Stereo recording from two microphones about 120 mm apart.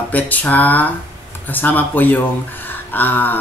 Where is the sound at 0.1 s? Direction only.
15° left (ahead or behind).